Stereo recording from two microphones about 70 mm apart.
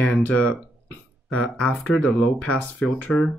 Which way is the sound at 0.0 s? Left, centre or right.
Centre.